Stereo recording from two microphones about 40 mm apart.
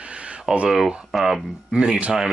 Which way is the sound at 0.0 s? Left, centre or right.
Right.